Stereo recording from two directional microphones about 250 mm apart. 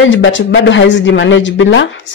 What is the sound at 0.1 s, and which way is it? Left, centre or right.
Speech, left.